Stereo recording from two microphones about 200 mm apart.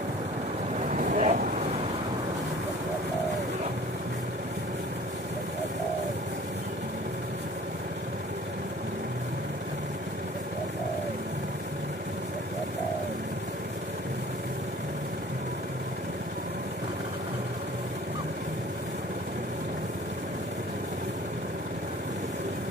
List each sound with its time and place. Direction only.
0.7 s vehicle: 40° right (ahead or behind)